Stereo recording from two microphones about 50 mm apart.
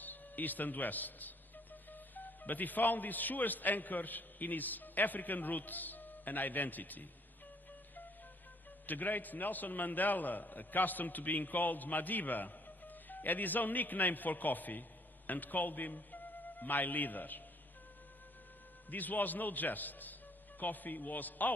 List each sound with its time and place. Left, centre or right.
0.0 s a man's voice: left
8.8 s a man's voice: left
18.9 s a man's voice: left